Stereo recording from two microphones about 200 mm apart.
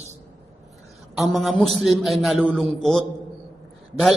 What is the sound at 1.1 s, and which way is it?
A man's voice, centre (ahead or behind).